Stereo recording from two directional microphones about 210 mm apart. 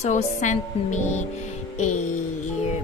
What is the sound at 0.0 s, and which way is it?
A woman's voice, 35° left (ahead or behind).